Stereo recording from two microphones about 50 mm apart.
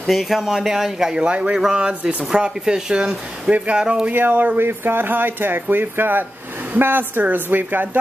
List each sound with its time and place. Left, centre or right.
0.0 s speech: centre
4.1 s a woman's voice: right
4.6 s a woman's voice: right